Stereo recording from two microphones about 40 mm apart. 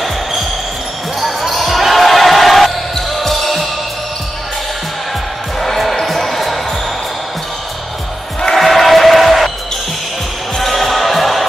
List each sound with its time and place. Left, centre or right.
1.2 s basketball bounce: centre
5.6 s basketball bounce: centre
8.5 s music: centre
10.6 s music: centre